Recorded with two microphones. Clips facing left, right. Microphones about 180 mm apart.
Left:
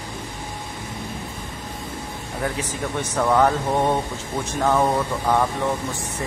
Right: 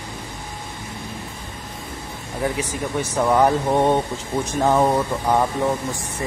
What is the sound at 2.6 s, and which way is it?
Speech, 10° right (ahead or behind).